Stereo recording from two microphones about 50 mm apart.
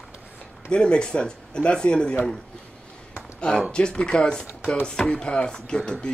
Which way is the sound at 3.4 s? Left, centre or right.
Left.